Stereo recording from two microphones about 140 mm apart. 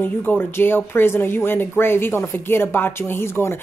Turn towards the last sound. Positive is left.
turn(degrees=20)  # may be behind; listen again after turning